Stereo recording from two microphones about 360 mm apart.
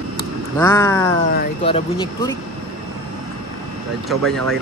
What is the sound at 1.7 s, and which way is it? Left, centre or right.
Speech, centre.